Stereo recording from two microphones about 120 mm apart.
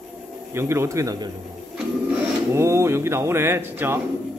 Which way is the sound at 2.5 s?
25° right (ahead or behind).